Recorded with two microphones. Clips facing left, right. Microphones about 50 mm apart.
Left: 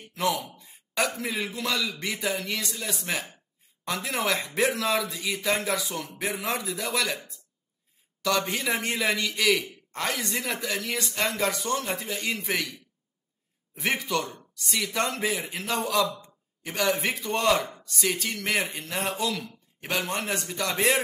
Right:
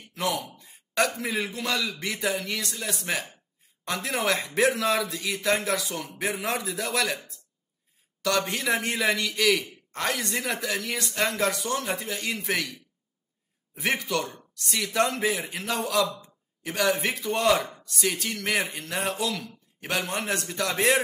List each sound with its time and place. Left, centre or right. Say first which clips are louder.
0.1 s speech: left 1 dB; centre
8.2 s speech: even; centre
13.7 s speech: even; centre